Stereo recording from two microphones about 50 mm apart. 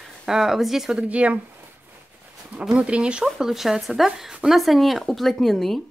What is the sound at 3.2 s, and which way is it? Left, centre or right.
Speech, centre.